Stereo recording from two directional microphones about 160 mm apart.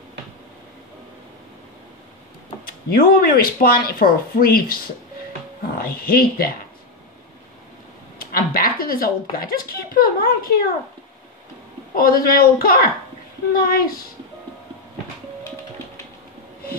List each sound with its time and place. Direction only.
2.6 s speech: 70° left (ahead or behind)
8.2 s a woman's voice: 70° left (ahead or behind)
11.9 s speech: 65° left (ahead or behind)